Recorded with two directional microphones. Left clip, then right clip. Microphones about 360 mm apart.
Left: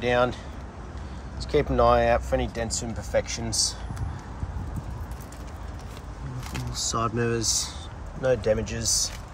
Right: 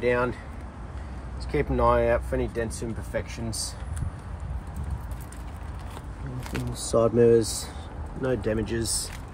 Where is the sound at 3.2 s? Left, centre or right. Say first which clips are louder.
Left 10 dB; left.